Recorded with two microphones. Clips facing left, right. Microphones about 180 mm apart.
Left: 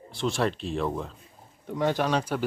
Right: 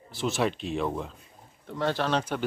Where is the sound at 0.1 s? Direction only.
Centre (ahead or behind).